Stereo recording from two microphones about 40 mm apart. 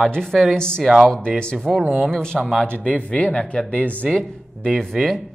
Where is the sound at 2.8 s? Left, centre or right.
Left.